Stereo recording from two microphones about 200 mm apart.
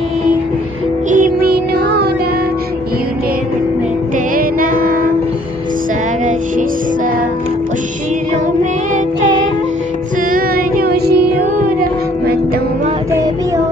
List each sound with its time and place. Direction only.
1.1 s music: 45° right (ahead or behind)
4.4 s music: 45° right (ahead or behind)
10.3 s music: 45° right (ahead or behind)